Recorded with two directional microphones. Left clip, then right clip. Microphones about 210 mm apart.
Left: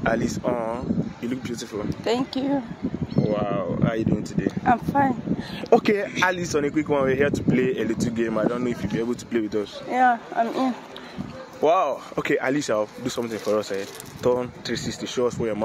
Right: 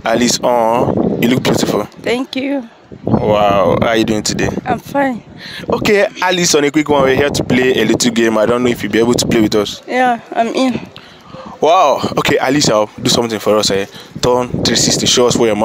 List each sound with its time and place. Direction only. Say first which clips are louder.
0.0 s speech: right 11 dB; 50° right (ahead or behind)
3.3 s a man's voice: right 16 dB; 55° right (ahead or behind)